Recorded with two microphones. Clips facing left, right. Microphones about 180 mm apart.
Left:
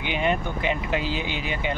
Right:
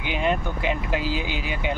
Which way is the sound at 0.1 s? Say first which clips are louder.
Right 1 dB; centre (ahead or behind).